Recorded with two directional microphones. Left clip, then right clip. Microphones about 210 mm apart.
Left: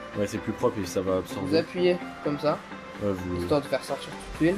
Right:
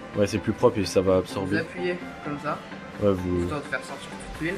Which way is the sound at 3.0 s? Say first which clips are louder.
Right 6 dB; 5° right (ahead or behind).